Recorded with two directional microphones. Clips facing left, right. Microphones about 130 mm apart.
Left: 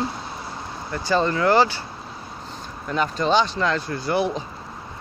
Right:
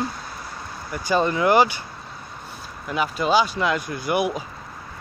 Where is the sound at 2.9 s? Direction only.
10° right (ahead or behind).